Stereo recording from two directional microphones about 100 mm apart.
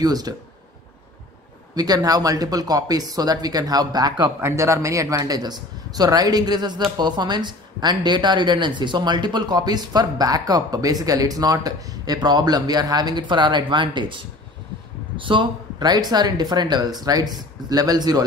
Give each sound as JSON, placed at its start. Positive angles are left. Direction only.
{"t": 0.0, "sound": "speech", "side_deg": -40}
{"t": 1.8, "sound": "speech", "side_deg": -40}
{"t": 4.4, "sound": "speech", "side_deg": -25}